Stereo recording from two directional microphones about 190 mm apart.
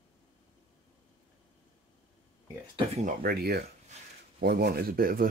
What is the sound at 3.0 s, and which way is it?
Speech, 50° right (ahead or behind).